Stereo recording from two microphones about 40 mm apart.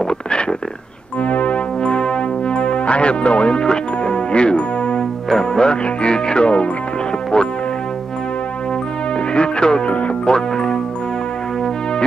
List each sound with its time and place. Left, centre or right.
0.0 s a sound: left
1.2 s music: left
1.8 s music: left
5.3 s speech: centre
9.3 s speech: left
10.3 s music: centre